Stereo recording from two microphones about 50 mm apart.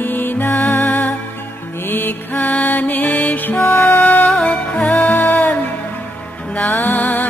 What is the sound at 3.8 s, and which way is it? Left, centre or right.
Music, left.